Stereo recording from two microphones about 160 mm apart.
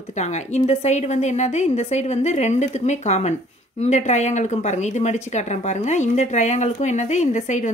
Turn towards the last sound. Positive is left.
turn(degrees=45)  # may be behind; listen again after turning